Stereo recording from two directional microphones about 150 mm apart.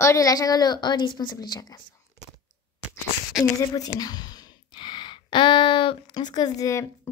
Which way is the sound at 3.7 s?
25° left (ahead or behind).